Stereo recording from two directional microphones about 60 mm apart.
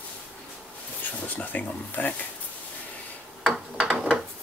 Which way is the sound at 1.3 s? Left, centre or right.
Left.